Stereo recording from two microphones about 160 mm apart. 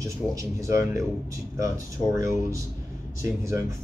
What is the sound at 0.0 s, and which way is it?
Speech, 20° right (ahead or behind).